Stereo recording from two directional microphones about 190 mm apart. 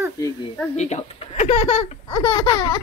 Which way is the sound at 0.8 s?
35° left (ahead or behind).